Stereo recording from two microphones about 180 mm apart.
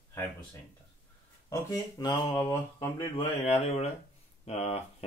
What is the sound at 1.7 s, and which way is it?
Speech, 25° left (ahead or behind).